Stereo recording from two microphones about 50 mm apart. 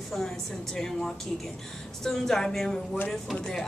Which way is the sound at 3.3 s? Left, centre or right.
Centre.